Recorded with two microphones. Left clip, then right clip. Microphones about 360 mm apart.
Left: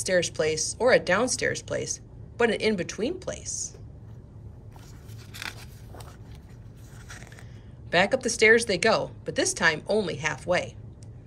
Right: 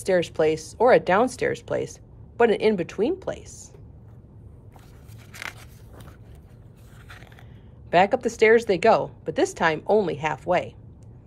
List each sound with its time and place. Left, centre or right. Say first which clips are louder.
0.0 s speech: right 3 dB; centre
7.9 s speech: right 4 dB; centre